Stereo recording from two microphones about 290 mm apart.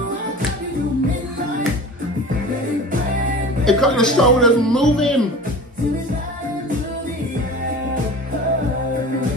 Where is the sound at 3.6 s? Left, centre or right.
Centre.